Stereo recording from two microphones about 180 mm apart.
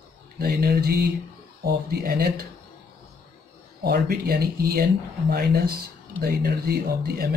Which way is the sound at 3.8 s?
60° right (ahead or behind).